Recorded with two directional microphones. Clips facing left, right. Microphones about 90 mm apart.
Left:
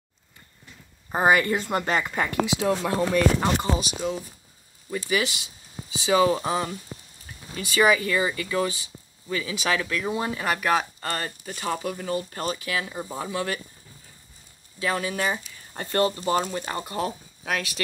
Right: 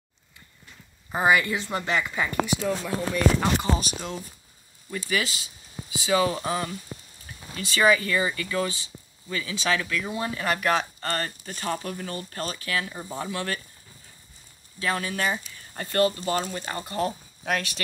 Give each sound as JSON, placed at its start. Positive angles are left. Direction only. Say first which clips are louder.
{"t": 1.1, "sound": "a woman's voice", "louder": "left 2 dB", "side_deg": 40}
{"t": 2.4, "sound": "speech", "louder": "left 3 dB", "side_deg": 75}
{"t": 3.3, "sound": "speech", "louder": "left 1 dB", "side_deg": 15}
{"t": 4.9, "sound": "speech", "louder": "left 2 dB", "side_deg": 20}
{"t": 14.8, "sound": "speech", "louder": "left 1 dB", "side_deg": 10}
{"t": 17.5, "sound": "speech", "louder": "right 1 dB", "side_deg": 5}